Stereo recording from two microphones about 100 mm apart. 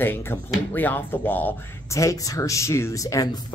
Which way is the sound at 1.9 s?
30° left (ahead or behind).